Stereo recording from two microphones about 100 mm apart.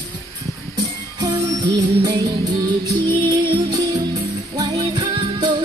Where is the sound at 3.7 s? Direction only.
35° right (ahead or behind).